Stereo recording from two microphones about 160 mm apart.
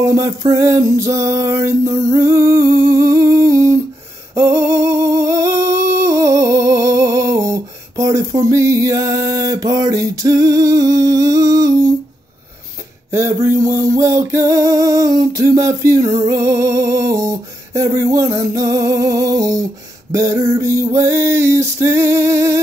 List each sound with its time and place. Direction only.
0.0 s music: 20° right (ahead or behind)
4.4 s humming: 15° right (ahead or behind)
13.1 s music: 15° right (ahead or behind)
16.2 s a sound: 20° right (ahead or behind)